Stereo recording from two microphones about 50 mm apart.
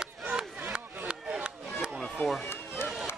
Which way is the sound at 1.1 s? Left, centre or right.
Centre.